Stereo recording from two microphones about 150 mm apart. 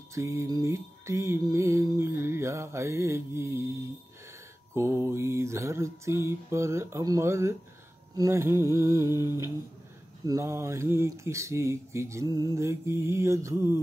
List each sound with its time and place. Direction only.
0.1 s speech: 20° right (ahead or behind)
4.7 s mantra: 20° right (ahead or behind)
8.2 s speech: 20° right (ahead or behind)